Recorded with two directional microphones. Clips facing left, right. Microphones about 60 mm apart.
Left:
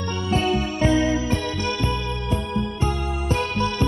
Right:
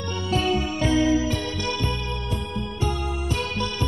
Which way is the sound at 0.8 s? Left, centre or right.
Left.